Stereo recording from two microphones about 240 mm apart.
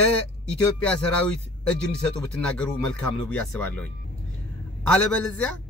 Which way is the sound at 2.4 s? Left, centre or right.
Centre.